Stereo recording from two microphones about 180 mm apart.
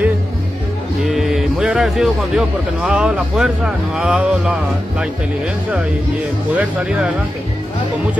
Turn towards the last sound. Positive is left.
turn(degrees=-5)  # may be behind; listen again after turning